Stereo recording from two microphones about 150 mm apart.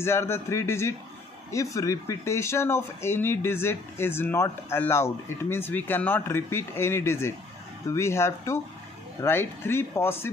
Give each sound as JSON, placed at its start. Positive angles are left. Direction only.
{"t": 0.0, "sound": "speech", "side_deg": 15}